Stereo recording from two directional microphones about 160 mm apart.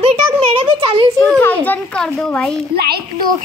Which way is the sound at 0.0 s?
35° right (ahead or behind).